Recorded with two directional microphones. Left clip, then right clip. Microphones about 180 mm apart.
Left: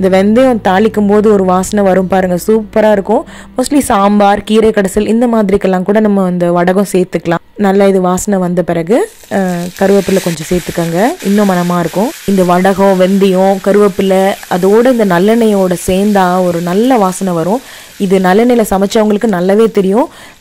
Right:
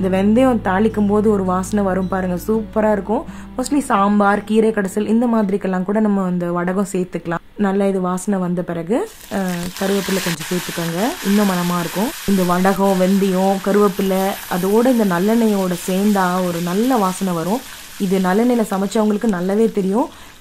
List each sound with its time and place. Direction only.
0.0 s a woman's voice: 35° left (ahead or behind)
11.0 s a woman's voice: 35° left (ahead or behind)